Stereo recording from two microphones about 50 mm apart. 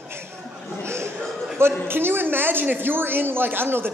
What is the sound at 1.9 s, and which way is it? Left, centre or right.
A man's voice, right.